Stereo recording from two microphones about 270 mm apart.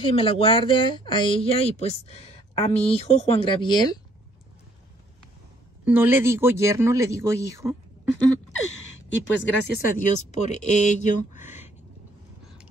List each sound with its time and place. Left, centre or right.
0.0 s speech: centre
5.9 s speech: centre
8.9 s a woman's voice: left
9.9 s speech: left